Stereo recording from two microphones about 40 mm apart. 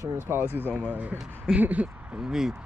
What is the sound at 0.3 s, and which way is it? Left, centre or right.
Speech, right.